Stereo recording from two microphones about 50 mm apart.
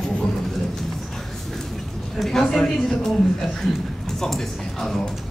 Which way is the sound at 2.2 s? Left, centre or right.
Centre.